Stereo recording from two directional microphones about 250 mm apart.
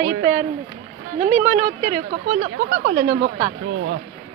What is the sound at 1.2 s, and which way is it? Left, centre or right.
Speech, right.